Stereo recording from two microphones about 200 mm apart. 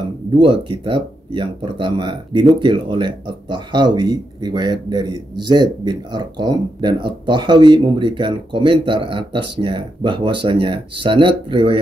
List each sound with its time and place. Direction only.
0.4 s speech: 25° right (ahead or behind)